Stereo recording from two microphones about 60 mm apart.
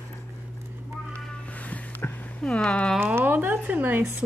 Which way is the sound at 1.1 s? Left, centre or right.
Left.